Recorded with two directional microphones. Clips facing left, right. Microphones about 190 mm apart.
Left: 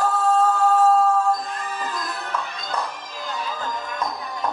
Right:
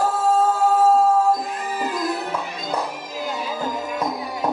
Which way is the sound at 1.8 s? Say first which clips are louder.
Right 8 dB; 10° right (ahead or behind).